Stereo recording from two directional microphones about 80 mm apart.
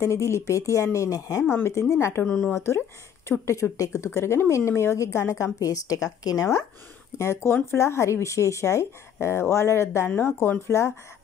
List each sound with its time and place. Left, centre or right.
0.0 s speech: left
1.4 s speech: left
7.2 s speech: left